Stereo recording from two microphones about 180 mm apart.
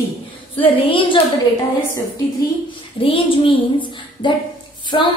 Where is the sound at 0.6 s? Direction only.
30° left (ahead or behind).